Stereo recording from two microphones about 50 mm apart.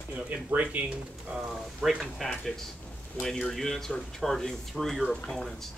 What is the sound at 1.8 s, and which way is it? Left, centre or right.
Speech, centre.